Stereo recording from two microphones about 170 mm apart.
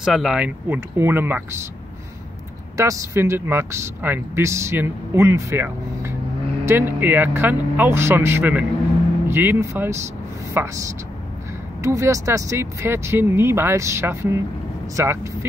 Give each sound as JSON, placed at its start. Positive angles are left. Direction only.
{"t": 0.0, "sound": "speech", "side_deg": 0}
{"t": 2.8, "sound": "a woman's voice", "side_deg": -15}